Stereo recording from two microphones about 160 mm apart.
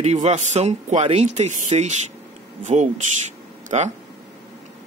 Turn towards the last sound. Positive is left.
turn(degrees=-40)  # may be behind; listen again after turning